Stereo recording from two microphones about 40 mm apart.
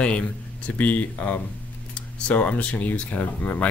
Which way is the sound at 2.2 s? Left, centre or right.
Left.